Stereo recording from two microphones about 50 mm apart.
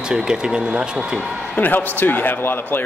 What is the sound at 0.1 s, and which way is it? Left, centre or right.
Speech, centre.